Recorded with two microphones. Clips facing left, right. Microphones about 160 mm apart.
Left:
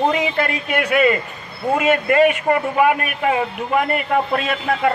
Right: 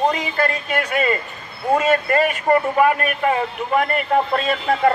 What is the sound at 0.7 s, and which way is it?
A man's voice, 35° right (ahead or behind).